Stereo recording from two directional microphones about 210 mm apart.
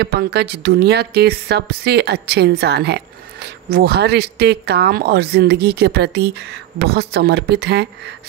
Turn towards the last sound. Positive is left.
turn(degrees=-55)  # may be behind; listen again after turning